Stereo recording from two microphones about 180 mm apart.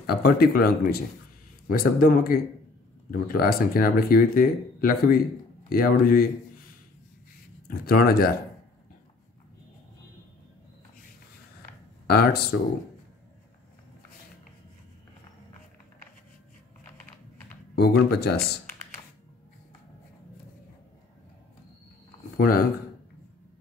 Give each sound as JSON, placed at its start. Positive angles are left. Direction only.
{"t": 0.0, "sound": "speech", "side_deg": 55}
{"t": 7.6, "sound": "speech", "side_deg": 55}
{"t": 12.1, "sound": "speech", "side_deg": 60}
{"t": 17.7, "sound": "speech", "side_deg": 65}
{"t": 22.4, "sound": "speech", "side_deg": 55}